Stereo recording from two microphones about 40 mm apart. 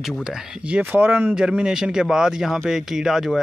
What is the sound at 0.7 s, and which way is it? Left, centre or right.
Speech, right.